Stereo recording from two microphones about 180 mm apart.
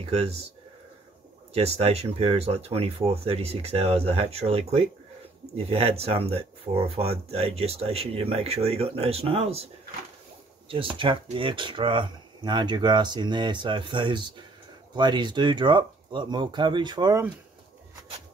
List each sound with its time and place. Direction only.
0.0 s speech: 35° right (ahead or behind)
1.5 s speech: 35° right (ahead or behind)
10.7 s speech: 30° right (ahead or behind)